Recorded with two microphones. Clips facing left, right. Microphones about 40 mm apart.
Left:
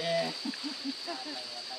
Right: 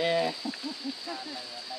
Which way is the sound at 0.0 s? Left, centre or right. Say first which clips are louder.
Right 4 dB; right.